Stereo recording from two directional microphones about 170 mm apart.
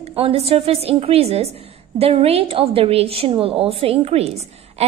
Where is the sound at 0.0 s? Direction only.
35° right (ahead or behind).